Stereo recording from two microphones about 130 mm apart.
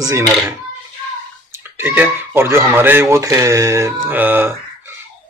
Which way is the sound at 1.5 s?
20° right (ahead or behind).